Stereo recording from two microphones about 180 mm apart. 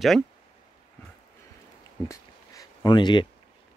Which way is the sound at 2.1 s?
20° left (ahead or behind).